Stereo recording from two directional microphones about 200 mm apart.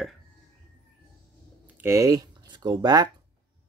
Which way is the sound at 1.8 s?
15° right (ahead or behind).